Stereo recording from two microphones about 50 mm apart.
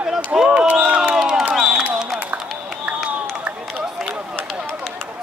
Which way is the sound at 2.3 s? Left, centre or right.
Right.